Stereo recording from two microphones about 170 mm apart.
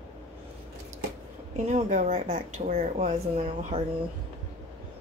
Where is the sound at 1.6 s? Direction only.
40° right (ahead or behind).